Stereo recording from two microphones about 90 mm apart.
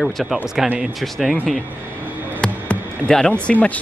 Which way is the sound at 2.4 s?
10° left (ahead or behind).